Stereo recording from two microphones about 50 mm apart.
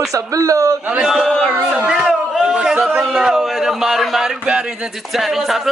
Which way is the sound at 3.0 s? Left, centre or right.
Centre.